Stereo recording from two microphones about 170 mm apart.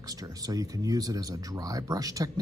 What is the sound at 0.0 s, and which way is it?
Speech, 20° right (ahead or behind).